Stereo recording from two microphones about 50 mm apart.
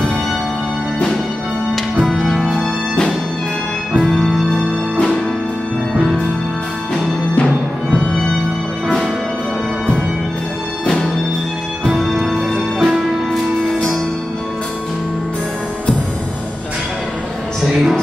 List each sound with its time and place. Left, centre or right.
2.0 s music: centre
4.1 s music: centre
7.3 s music: left
11.9 s music: centre